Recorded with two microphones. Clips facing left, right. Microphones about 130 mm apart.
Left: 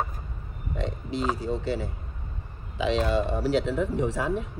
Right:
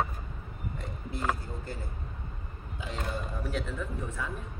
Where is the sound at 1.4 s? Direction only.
90° left.